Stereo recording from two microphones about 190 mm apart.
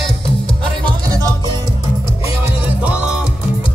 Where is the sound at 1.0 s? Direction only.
20° right (ahead or behind).